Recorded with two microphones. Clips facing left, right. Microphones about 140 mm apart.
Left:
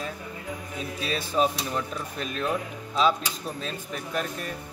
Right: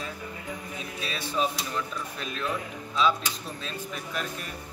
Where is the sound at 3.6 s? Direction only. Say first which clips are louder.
Left 2 dB; 45° left (ahead or behind).